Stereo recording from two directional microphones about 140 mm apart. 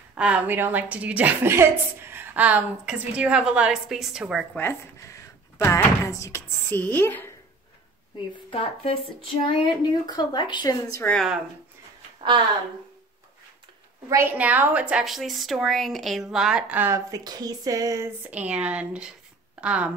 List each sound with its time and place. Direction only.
0.1 s a woman's voice: 10° right (ahead or behind)
4.6 s speech: 15° left (ahead or behind)
8.5 s speech: 45° left (ahead or behind)
10.0 s speech: 30° left (ahead or behind)
11.0 s speech: 10° left (ahead or behind)
14.0 s a woman's voice: 15° right (ahead or behind)